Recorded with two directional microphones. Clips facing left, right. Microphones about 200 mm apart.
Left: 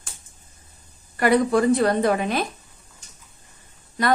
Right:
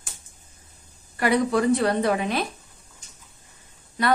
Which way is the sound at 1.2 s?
45° left (ahead or behind).